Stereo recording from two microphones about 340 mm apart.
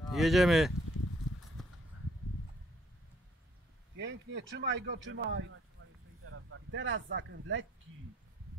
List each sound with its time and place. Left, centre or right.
0.1 s speech: centre
4.0 s speech: right
5.8 s a sound: right
6.2 s speech: right